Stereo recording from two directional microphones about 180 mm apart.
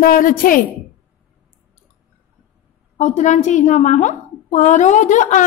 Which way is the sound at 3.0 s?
40° left (ahead or behind).